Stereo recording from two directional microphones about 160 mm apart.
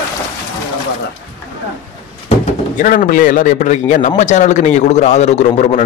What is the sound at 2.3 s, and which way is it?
Speech, 50° left (ahead or behind).